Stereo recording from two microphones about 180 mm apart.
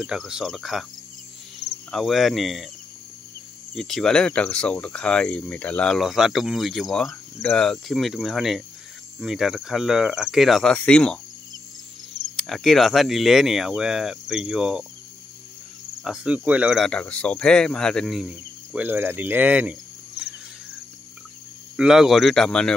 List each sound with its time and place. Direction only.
0.0 s speech: 5° right (ahead or behind)
3.7 s speech: centre (ahead or behind)
7.1 s speech: 15° left (ahead or behind)
7.5 s speech: 5° left (ahead or behind)
12.4 s speech: centre (ahead or behind)
16.0 s speech: 5° right (ahead or behind)
21.7 s speech: 5° right (ahead or behind)